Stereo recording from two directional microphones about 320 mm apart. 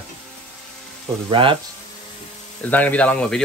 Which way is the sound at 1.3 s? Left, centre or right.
Centre.